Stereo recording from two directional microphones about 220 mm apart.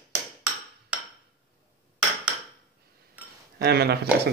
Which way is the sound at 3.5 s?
45° right (ahead or behind).